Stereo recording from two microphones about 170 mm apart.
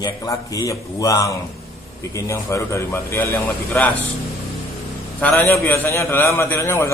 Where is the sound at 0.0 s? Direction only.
20° left (ahead or behind).